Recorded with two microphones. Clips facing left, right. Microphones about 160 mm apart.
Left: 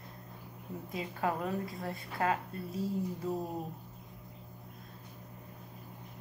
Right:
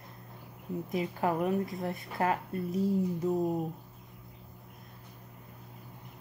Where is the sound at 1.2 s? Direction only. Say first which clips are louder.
Right 4 dB; 20° right (ahead or behind).